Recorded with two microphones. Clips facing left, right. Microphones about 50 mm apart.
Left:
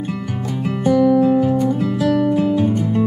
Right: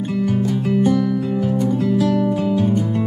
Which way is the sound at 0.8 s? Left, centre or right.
Centre.